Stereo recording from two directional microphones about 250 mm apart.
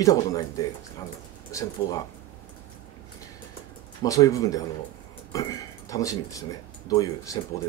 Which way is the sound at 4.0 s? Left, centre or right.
Centre.